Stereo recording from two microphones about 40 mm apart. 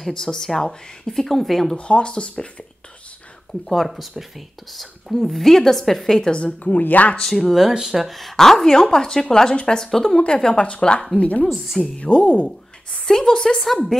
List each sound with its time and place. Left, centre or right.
0.1 s speech: centre
1.8 s a woman's voice: left
3.6 s a woman's voice: centre
6.4 s speech: left
7.2 s a woman's voice: centre
7.7 s speech: centre
9.8 s speech: centre
10.1 s a woman's voice: left
11.1 s speech: left
12.4 s a sound: centre